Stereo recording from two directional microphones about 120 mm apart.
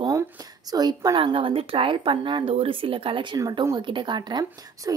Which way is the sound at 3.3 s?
30° right (ahead or behind).